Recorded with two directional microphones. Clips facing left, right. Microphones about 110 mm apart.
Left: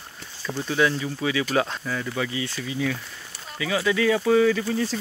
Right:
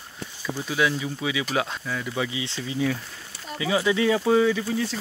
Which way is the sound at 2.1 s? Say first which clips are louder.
Left 1 dB; 15° right (ahead or behind).